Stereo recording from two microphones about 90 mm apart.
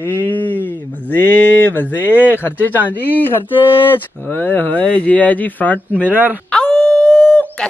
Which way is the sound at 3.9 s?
20° left (ahead or behind).